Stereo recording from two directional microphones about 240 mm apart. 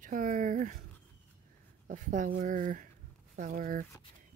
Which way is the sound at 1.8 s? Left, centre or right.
Right.